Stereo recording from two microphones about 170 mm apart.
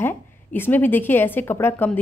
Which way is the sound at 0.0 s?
10° left (ahead or behind).